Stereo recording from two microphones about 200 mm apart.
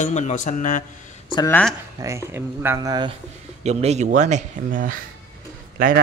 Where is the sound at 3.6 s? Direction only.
35° right (ahead or behind).